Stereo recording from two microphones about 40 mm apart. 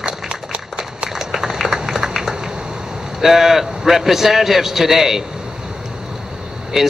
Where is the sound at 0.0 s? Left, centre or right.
Right.